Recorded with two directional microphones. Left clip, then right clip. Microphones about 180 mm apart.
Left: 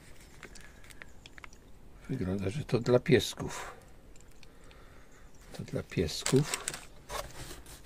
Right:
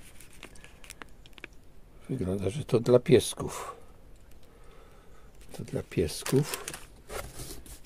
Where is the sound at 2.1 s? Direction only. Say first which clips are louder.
Right 4 dB; 20° right (ahead or behind).